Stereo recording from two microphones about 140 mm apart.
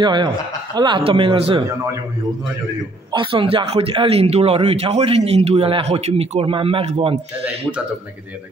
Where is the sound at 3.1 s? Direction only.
35° right (ahead or behind).